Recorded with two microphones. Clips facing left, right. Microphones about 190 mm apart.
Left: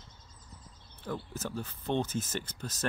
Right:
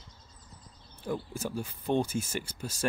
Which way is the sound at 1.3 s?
10° right (ahead or behind).